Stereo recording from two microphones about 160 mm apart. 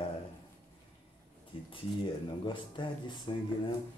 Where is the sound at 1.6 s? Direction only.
30° left (ahead or behind).